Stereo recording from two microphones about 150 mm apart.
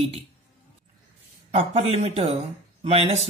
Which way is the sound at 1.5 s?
40° right (ahead or behind).